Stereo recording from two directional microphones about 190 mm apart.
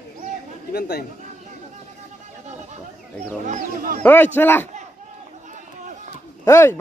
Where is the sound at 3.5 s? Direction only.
40° right (ahead or behind).